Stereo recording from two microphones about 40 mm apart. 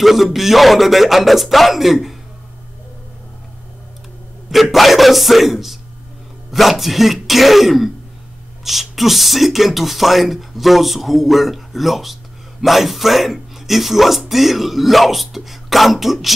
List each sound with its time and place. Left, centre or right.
0.0 s speech: centre
4.5 s a man's voice: centre